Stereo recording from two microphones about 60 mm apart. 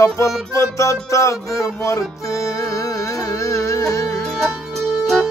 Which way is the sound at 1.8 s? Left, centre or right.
Left.